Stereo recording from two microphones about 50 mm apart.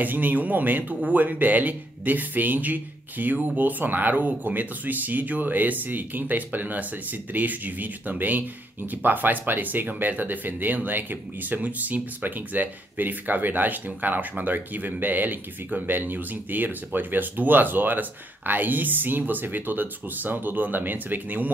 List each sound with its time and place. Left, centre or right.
0.0 s speech: right